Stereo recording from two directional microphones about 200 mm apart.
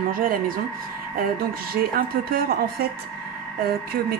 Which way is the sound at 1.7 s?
50° right (ahead or behind).